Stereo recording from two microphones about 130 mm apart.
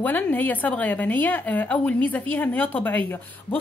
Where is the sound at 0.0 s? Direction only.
15° left (ahead or behind).